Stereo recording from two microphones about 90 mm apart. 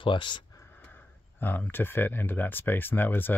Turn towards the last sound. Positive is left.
turn(degrees=20)  # may be behind; listen again after turning